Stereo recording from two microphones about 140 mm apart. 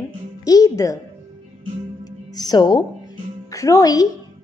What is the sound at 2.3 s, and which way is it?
A woman's voice, 30° left (ahead or behind).